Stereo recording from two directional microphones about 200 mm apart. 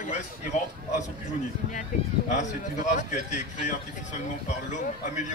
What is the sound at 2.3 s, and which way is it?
Speech, 40° left (ahead or behind).